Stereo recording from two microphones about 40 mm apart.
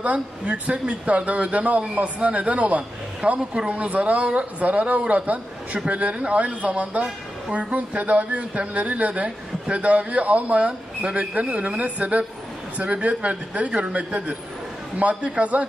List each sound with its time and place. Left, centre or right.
0.0 s a man's voice: right